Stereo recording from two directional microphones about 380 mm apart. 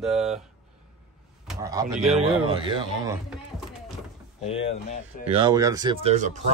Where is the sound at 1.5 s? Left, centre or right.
Centre.